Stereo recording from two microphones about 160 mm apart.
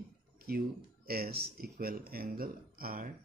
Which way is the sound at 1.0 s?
75° right (ahead or behind).